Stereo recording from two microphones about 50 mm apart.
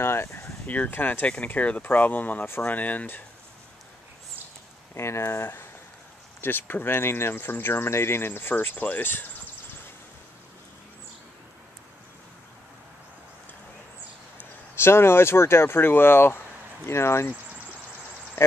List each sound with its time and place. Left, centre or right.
0.0 s a sound: left
0.7 s speech: left
1.2 s speech: left
2.4 s speech: left
2.7 s speech: left
4.9 s speech: left
14.8 s speech: left